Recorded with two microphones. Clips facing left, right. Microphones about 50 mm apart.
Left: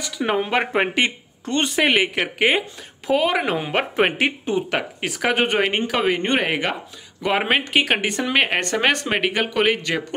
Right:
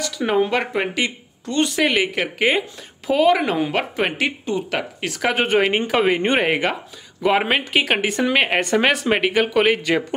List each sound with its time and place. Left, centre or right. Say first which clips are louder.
0.0 s a sound: right 3 dB; centre
0.5 s speech: left 1 dB; left
1.8 s speech: left 2 dB; left
2.1 s a woman's voice: even; centre
4.5 s speech: left 1 dB; centre